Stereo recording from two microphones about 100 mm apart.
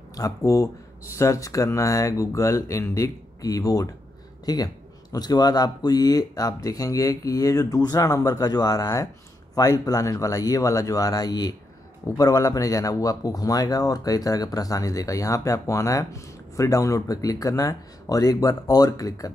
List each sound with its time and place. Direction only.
0.1 s speech: 35° left (ahead or behind)